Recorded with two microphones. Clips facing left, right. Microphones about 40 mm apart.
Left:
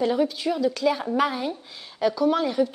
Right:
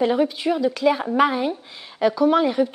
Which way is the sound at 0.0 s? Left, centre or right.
Centre.